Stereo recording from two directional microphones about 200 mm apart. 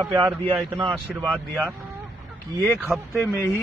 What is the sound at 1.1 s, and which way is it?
Speech, centre (ahead or behind).